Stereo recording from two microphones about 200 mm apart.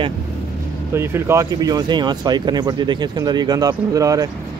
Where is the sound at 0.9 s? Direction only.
10° right (ahead or behind).